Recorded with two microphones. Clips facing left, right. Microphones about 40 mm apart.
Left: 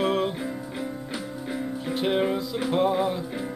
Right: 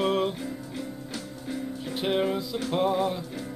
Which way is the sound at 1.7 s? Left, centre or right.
Centre.